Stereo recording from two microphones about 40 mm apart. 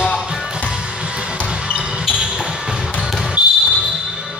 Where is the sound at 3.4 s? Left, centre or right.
Right.